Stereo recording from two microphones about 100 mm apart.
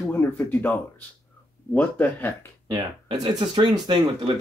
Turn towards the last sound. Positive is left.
turn(degrees=-50)  # may be behind; listen again after turning